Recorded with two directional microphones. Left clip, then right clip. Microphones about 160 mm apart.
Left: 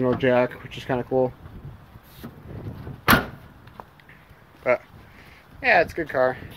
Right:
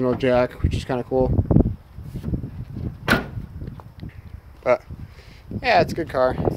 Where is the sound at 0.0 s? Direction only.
20° right (ahead or behind).